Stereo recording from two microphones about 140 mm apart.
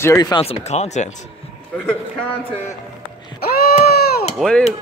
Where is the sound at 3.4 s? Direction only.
90° left.